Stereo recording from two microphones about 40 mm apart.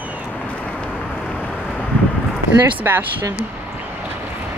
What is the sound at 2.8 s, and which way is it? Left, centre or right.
Speech, right.